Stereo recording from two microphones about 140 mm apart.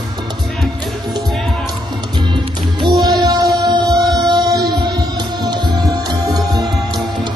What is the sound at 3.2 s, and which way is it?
Music, 25° right (ahead or behind).